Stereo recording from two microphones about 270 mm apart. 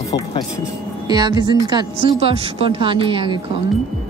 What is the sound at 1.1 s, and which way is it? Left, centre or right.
Speech, centre.